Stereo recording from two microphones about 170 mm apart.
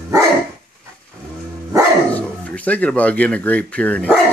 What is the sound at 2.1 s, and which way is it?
Speech, 10° left (ahead or behind).